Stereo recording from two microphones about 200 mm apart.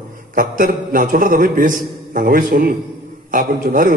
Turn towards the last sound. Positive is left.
turn(degrees=-50)  # may be behind; listen again after turning